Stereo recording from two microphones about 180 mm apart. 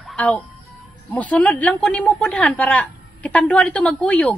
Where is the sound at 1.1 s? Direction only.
10° left (ahead or behind).